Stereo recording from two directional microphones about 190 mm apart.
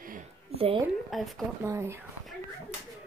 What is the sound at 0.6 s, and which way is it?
Speech, 30° right (ahead or behind).